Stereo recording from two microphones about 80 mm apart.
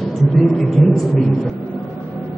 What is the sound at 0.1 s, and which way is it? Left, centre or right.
Speech, centre.